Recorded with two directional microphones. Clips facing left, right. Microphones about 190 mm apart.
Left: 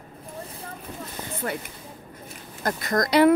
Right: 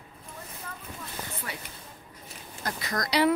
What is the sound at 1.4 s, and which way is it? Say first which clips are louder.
Speech: left 14 dB; 50° left (ahead or behind).